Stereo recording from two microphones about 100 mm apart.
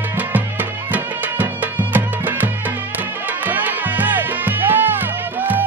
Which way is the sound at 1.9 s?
15° right (ahead or behind).